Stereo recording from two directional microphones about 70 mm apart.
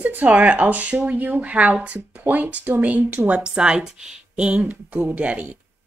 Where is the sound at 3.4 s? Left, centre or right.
Centre.